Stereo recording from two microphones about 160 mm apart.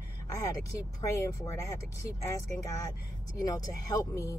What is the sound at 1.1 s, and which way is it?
Speech, 20° left (ahead or behind).